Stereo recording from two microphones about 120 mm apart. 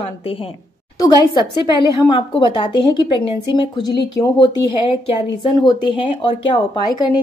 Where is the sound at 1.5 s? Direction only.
40° left (ahead or behind).